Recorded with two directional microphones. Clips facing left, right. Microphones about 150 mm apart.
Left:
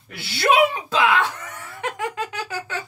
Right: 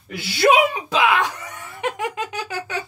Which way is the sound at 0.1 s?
15° right (ahead or behind).